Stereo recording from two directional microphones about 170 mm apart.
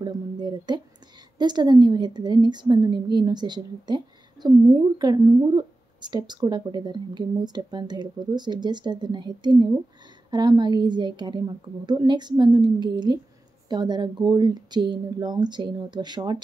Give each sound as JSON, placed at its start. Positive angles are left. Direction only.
{"t": 0.0, "sound": "speech", "side_deg": -25}